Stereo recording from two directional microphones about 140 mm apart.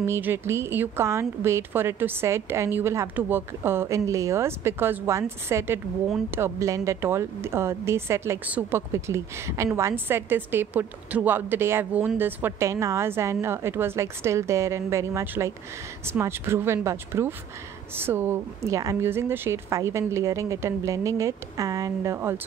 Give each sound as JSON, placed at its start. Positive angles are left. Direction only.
{"t": 0.0, "sound": "a woman's voice", "side_deg": -15}